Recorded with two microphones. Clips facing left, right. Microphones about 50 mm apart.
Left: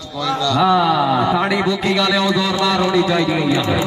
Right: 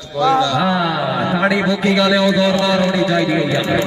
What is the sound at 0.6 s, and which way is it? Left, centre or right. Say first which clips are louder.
Carnatic music: left 3 dB; centre.